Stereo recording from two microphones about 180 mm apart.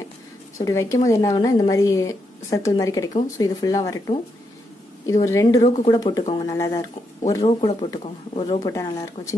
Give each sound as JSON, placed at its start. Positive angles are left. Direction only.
{"t": 0.6, "sound": "a woman's voice", "side_deg": 15}
{"t": 5.0, "sound": "a woman's voice", "side_deg": 15}
{"t": 5.6, "sound": "speech", "side_deg": 40}
{"t": 5.9, "sound": "speech", "side_deg": 20}
{"t": 8.6, "sound": "speech", "side_deg": 20}